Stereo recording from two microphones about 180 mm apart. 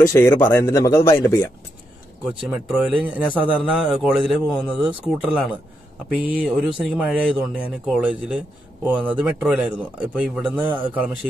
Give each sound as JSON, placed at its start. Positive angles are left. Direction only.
{"t": 0.0, "sound": "a man's voice", "side_deg": 15}
{"t": 2.4, "sound": "speech", "side_deg": -5}